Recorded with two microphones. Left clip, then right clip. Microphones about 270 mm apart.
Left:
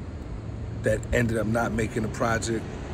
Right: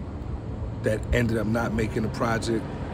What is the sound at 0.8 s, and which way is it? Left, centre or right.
Speech, centre.